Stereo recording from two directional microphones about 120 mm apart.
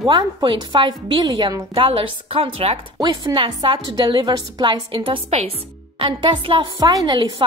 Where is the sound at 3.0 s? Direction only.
40° right (ahead or behind).